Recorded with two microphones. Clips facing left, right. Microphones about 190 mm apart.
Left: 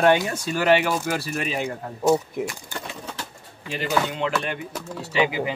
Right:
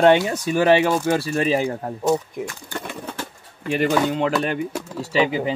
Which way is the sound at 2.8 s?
55° right (ahead or behind).